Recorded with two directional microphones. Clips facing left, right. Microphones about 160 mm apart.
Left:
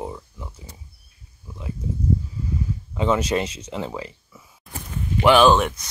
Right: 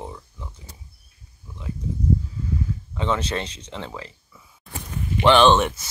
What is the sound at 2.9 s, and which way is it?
Speech, 10° left (ahead or behind).